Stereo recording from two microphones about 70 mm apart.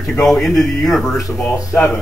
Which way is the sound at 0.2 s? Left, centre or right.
Centre.